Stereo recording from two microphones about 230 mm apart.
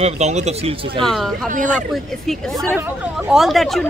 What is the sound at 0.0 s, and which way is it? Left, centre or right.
Speech, right.